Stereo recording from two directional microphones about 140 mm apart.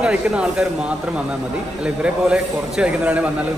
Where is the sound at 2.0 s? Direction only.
5° right (ahead or behind).